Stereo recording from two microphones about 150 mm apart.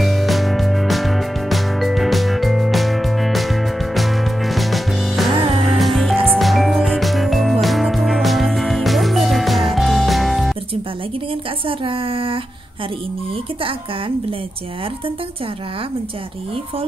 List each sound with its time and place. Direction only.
0.0 s music: centre (ahead or behind)
11.6 s a sound: 35° right (ahead or behind)
13.6 s a woman's voice: 35° right (ahead or behind)